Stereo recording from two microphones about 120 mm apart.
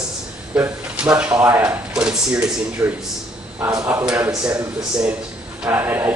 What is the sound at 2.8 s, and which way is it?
A man's voice, 25° right (ahead or behind).